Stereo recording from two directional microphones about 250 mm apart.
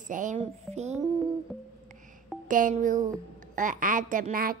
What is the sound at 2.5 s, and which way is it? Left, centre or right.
A woman's voice, right.